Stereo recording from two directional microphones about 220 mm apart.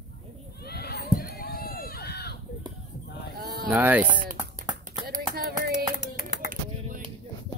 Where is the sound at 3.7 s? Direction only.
5° right (ahead or behind).